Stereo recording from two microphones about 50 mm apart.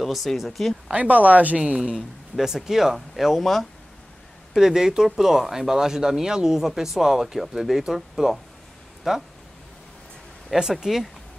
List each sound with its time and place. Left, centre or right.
0.0 s speech: centre
0.8 s speech: right
2.4 s speech: centre
4.6 s speech: centre
10.5 s speech: centre